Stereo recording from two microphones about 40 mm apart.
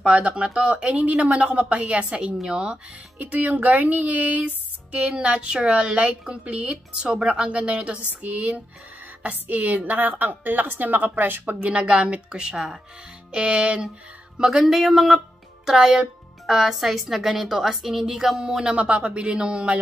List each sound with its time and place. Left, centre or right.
0.0 s a woman's voice: right
2.4 s a woman's voice: right
3.2 s a woman's voice: right
4.9 s a woman's voice: right
8.1 s a woman's voice: right
12.0 s a woman's voice: right
14.6 s a woman's voice: centre
15.1 s music: centre
16.4 s a woman's voice: centre
18.8 s a woman's voice: right